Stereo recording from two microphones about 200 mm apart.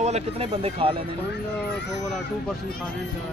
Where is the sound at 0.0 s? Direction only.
30° right (ahead or behind).